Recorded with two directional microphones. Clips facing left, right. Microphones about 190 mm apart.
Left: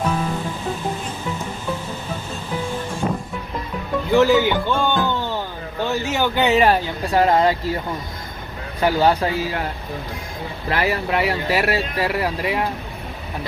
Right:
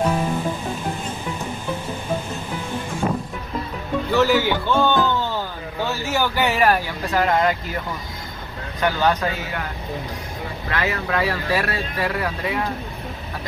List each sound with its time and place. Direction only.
4.1 s a man's voice: 15° left (ahead or behind)
8.8 s speech: 30° left (ahead or behind)
10.7 s speech: 30° left (ahead or behind)